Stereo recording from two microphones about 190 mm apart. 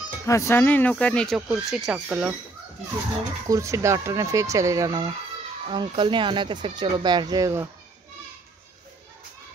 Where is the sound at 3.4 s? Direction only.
15° right (ahead or behind).